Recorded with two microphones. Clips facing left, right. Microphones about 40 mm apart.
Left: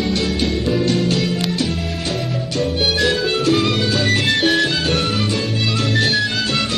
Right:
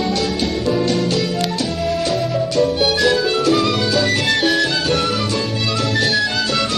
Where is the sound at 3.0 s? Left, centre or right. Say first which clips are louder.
Right 2 dB; centre.